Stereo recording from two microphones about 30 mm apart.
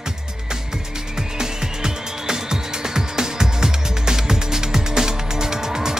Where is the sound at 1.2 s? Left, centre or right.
Centre.